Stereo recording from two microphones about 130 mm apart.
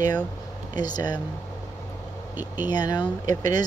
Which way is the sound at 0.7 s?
30° left (ahead or behind).